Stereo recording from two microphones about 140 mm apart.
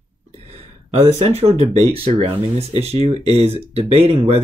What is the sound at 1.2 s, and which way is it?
Speech, 45° right (ahead or behind).